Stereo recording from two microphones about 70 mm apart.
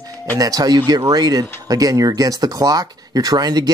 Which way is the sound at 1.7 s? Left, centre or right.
Right.